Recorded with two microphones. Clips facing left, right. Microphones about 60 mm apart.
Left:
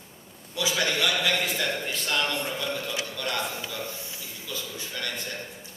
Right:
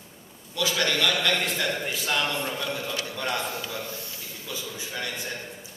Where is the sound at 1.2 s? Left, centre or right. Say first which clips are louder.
Right 1 dB; centre.